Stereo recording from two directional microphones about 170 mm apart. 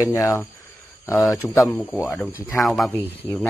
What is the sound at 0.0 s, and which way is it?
Speech, 20° left (ahead or behind).